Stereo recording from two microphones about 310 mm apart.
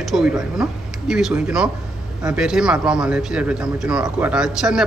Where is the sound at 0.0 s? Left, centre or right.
Centre.